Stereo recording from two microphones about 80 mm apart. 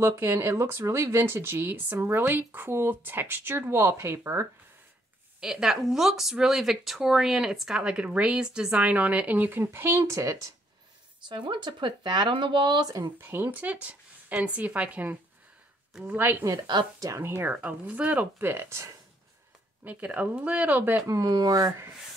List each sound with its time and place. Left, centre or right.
0.2 s speech: right
5.4 s speech: centre; by 10.5 s right
11.2 s speech: right
13.2 s speech: right
17.0 s speech: right
17.5 s speech: right
18.5 s speech: right
19.8 s speech: centre
21.1 s speech: right